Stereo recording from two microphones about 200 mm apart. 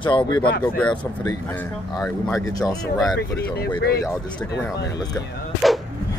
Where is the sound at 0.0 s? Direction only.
25° left (ahead or behind).